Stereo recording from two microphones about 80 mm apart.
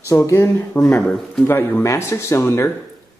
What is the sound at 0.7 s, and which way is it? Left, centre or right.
Speech, left.